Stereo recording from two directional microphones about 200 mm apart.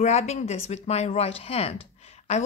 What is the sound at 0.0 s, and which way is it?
Speech, 35° left (ahead or behind).